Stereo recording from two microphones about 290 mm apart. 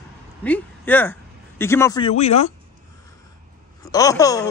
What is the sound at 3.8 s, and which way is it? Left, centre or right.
Speech, centre.